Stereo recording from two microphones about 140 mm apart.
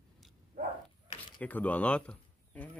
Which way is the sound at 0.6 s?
90° right.